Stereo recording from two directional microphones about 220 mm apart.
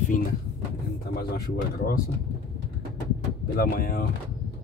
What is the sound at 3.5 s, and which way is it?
Speech, 45° left (ahead or behind).